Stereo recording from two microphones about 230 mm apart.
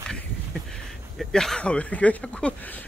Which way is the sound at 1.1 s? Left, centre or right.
Centre.